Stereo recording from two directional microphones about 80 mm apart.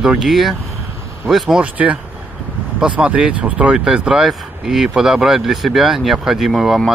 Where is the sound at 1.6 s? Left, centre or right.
Centre.